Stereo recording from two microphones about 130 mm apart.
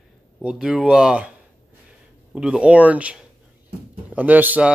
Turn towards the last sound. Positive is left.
turn(degrees=-10)  # may be behind; listen again after turning